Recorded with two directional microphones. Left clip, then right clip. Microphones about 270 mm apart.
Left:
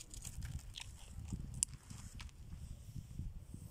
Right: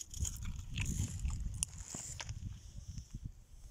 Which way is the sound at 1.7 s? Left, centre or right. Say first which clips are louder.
Right 10 dB; right.